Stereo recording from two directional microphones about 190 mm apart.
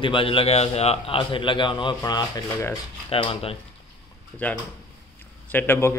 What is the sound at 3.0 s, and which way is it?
Speech, 30° left (ahead or behind).